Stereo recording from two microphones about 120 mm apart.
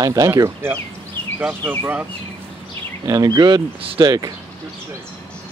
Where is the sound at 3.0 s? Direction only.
30° right (ahead or behind).